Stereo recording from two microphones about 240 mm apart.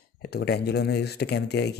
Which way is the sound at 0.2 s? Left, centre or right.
Left.